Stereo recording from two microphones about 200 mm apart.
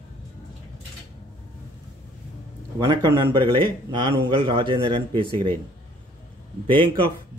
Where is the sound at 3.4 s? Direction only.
25° right (ahead or behind).